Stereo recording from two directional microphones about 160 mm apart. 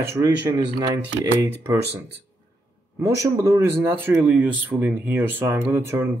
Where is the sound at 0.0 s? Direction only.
20° right (ahead or behind).